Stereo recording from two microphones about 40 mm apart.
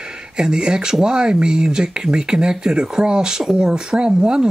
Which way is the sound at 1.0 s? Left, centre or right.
Right.